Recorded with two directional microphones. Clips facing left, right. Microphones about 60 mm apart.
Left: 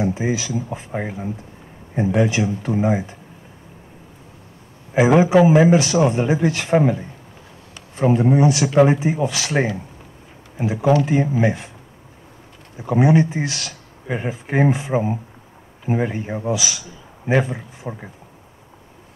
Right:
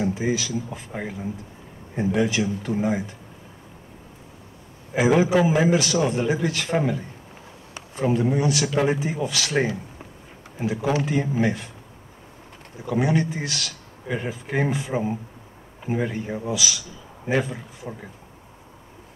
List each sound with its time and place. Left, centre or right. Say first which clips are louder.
0.0 s speech: left 3 dB; left
4.9 s speech: left 5 dB; left
8.0 s speech: left 6 dB; left
12.8 s speech: left 6 dB; left